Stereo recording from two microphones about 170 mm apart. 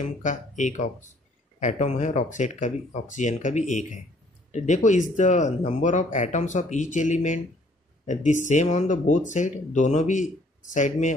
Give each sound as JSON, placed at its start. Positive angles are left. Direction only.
{"t": 0.2, "sound": "speech", "side_deg": 45}